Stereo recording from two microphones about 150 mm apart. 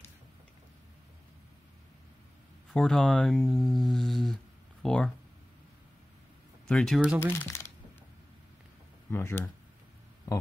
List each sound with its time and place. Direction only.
2.7 s speech: 5° left (ahead or behind)
6.7 s speech: 5° left (ahead or behind)
7.3 s speech: 20° left (ahead or behind)
9.1 s speech: 15° left (ahead or behind)